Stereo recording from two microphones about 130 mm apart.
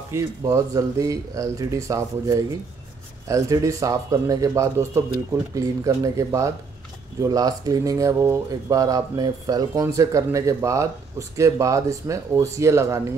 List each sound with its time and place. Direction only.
0.1 s speech: 25° right (ahead or behind)